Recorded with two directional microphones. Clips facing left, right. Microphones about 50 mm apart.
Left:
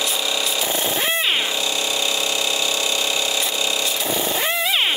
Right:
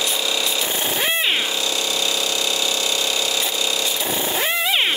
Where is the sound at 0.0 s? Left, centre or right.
Centre.